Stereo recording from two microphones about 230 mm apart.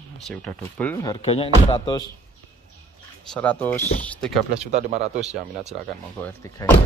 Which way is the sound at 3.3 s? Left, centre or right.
Centre.